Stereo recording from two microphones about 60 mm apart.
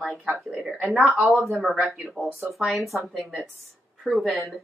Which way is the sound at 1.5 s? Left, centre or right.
Centre.